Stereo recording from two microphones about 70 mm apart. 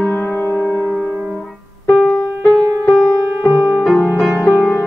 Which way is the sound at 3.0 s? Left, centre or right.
Left.